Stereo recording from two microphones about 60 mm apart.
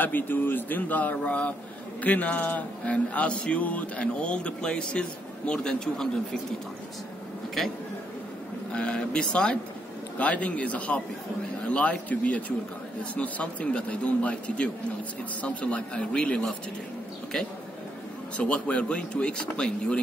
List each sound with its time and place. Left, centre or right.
0.0 s a man's voice: left; by 6.4 s centre
7.6 s a man's voice: centre
8.7 s a man's voice: centre
18.4 s speech: centre